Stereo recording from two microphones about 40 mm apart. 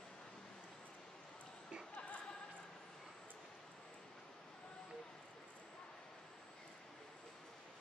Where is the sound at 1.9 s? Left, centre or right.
Left.